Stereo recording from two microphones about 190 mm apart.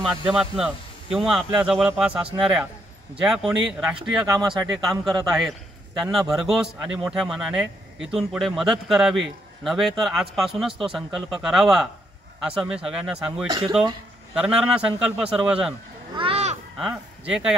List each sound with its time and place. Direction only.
0.3 s a man's voice: 5° right (ahead or behind)
4.3 s speech: 20° right (ahead or behind)
5.3 s a man's voice: centre (ahead or behind)
13.5 s speech: 25° right (ahead or behind)
14.3 s a man's voice: 5° right (ahead or behind)
16.2 s a sound: 30° right (ahead or behind)
16.7 s speech: 5° right (ahead or behind)